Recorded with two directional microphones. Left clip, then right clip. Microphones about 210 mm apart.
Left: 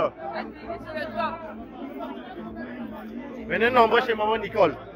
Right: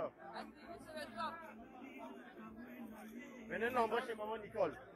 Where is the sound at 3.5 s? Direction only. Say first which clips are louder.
Left 18 dB; 5° right (ahead or behind).